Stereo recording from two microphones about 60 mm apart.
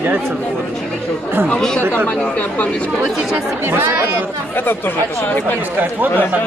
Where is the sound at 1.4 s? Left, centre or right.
Centre.